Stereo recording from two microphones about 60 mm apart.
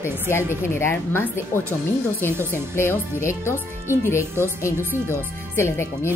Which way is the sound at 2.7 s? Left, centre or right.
Left.